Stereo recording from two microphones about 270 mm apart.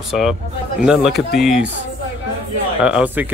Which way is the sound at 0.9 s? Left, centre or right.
Centre.